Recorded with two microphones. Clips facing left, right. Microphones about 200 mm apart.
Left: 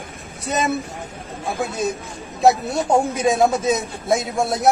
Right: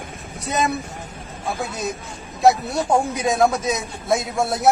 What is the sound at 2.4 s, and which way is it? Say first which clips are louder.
A man's voice: even; centre (ahead or behind).